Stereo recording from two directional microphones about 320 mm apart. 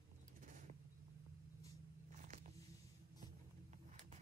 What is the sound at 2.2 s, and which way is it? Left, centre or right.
Biting, right.